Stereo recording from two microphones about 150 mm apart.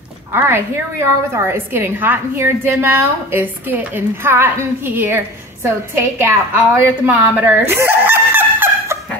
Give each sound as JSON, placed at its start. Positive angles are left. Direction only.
{"t": 0.3, "sound": "a woman's voice", "side_deg": -15}